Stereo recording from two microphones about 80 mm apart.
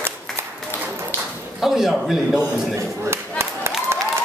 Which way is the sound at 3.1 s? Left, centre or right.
Right.